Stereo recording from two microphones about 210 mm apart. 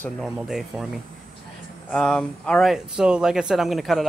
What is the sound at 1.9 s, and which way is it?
Speech, 5° left (ahead or behind).